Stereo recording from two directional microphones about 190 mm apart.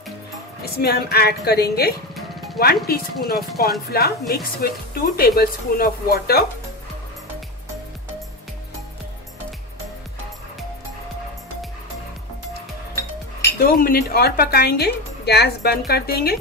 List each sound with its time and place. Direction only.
0.7 s a woman's voice: 55° left (ahead or behind)
13.6 s a woman's voice: 50° left (ahead or behind)